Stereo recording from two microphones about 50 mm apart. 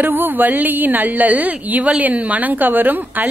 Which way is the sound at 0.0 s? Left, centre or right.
Right.